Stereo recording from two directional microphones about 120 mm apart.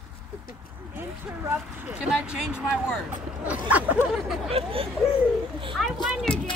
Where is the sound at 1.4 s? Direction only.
15° right (ahead or behind).